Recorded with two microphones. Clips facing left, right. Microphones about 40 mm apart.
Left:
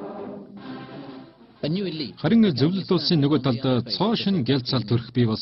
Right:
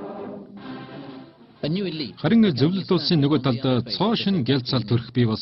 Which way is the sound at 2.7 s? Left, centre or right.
Centre.